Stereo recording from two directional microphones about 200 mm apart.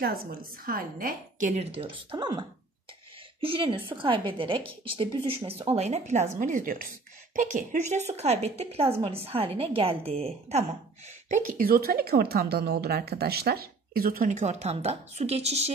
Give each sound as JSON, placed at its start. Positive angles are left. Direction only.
{"t": 0.0, "sound": "a woman's voice", "side_deg": -50}
{"t": 8.1, "sound": "a woman's voice", "side_deg": -30}
{"t": 11.2, "sound": "a woman's voice", "side_deg": -40}